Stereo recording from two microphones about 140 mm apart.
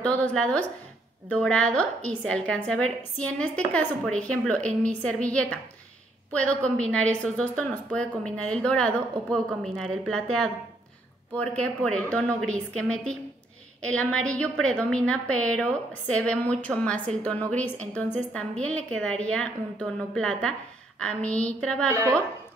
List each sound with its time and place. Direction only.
0.3 s a woman's voice: 5° left (ahead or behind)
11.3 s a woman's voice: 10° left (ahead or behind)
21.9 s a woman's voice: 20° right (ahead or behind)